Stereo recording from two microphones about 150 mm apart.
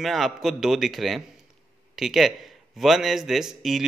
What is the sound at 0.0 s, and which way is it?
Speech, centre (ahead or behind).